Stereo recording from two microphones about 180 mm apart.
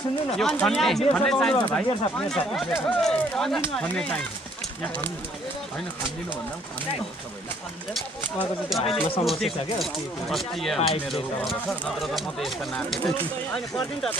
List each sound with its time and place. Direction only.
0.4 s speech: 5° left (ahead or behind)
7.9 s speech: centre (ahead or behind)
11.9 s speech: centre (ahead or behind)